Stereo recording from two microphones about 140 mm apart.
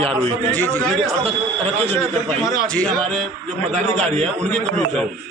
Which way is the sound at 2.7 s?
5° left (ahead or behind).